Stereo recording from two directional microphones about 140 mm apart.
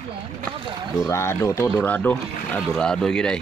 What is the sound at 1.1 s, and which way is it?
Speech, 20° left (ahead or behind).